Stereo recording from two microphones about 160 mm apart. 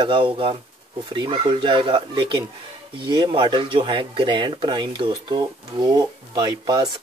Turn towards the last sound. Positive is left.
turn(degrees=-30)  # may be behind; listen again after turning